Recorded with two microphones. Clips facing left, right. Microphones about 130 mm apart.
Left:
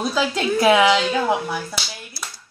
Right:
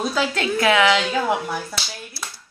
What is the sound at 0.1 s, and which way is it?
Speech, 10° left (ahead or behind).